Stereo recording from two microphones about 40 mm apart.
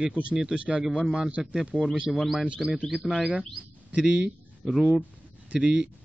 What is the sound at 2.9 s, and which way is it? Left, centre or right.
Speech, centre.